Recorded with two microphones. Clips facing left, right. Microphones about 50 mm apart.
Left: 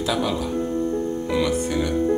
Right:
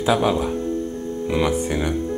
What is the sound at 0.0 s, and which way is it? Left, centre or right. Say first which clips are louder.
Speech: right 4 dB; right.